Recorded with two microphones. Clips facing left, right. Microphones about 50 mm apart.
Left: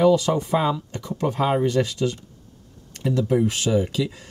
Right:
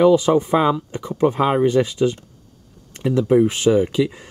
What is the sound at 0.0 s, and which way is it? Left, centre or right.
Speech, right.